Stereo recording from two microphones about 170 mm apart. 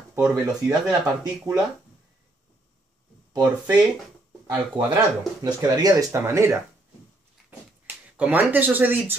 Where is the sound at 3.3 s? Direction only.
20° right (ahead or behind).